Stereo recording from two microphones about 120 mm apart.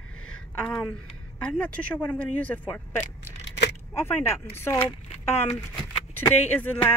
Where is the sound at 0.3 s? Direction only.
5° left (ahead or behind).